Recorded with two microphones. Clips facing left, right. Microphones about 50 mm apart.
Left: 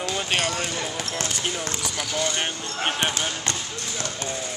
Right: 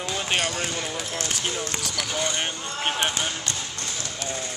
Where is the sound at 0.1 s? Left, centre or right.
Centre.